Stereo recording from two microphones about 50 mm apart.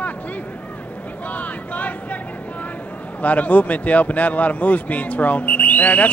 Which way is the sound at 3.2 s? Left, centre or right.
Left.